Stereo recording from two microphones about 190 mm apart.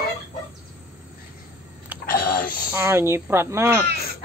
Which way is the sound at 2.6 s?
15° right (ahead or behind).